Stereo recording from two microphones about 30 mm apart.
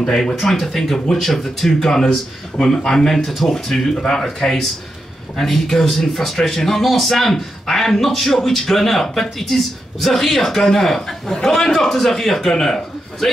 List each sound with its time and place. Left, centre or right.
0.2 s a man's voice: centre
3.3 s speech: centre
3.5 s a man's voice: centre